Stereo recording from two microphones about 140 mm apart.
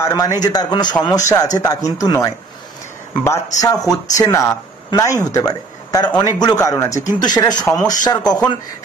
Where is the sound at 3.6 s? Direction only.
25° left (ahead or behind).